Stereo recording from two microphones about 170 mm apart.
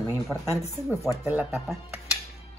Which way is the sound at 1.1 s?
15° right (ahead or behind).